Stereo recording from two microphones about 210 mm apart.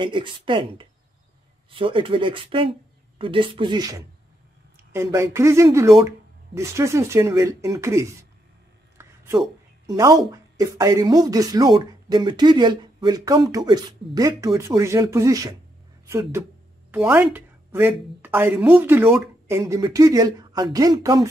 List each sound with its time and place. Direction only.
0.0 s speech: 25° right (ahead or behind)
8.9 s a sound: 10° right (ahead or behind)
9.9 s speech: 15° right (ahead or behind)